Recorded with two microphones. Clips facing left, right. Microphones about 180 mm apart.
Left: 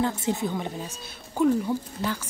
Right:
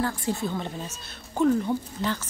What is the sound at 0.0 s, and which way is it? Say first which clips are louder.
A woman's voice: left 2 dB; 20° left (ahead or behind).